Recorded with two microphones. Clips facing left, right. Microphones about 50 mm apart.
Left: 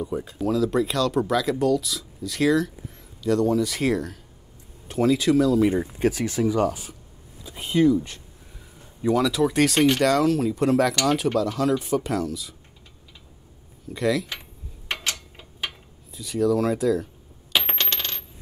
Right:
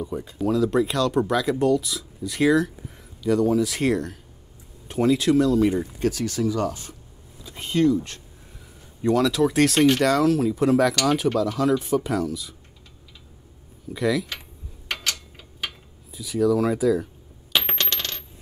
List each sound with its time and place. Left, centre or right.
0.0 s speech: centre
5.7 s speech: centre
6.7 s speech: centre
13.9 s speech: centre
14.9 s a sound: centre
16.1 s speech: centre
17.5 s coin: centre